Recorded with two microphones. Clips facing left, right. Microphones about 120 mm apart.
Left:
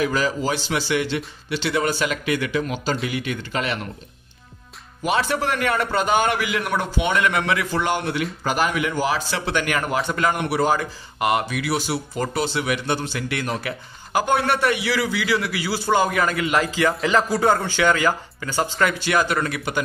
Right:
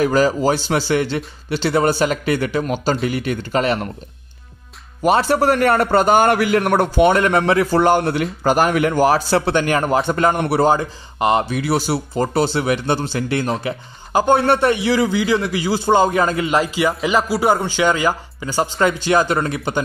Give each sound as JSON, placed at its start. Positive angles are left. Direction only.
{"t": 0.0, "sound": "a man's voice", "side_deg": -40}
{"t": 5.0, "sound": "a man's voice", "side_deg": -40}